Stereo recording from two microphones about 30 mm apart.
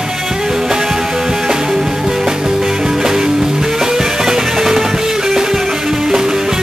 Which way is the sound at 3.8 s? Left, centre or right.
Centre.